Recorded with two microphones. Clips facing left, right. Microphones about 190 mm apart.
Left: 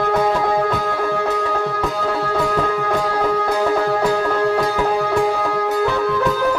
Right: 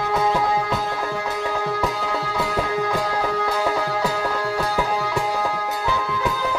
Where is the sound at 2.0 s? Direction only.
60° left (ahead or behind).